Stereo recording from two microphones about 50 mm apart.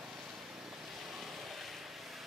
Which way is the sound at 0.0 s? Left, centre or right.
Centre.